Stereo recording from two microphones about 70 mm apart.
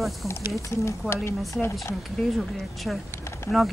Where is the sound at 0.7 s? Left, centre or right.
Left.